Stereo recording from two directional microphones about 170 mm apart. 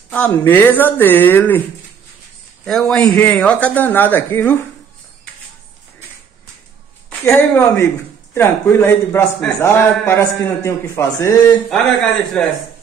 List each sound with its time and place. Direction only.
0.1 s a man's voice: 10° left (ahead or behind)
2.6 s a man's voice: 5° left (ahead or behind)
7.1 s a man's voice: 10° left (ahead or behind)